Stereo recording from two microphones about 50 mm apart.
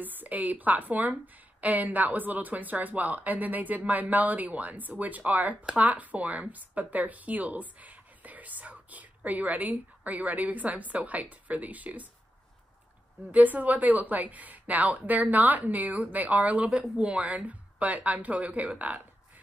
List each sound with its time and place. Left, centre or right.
0.0 s a woman's voice: right
13.3 s a woman's voice: right